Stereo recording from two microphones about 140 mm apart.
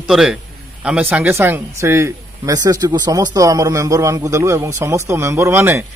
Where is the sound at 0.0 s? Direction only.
5° right (ahead or behind).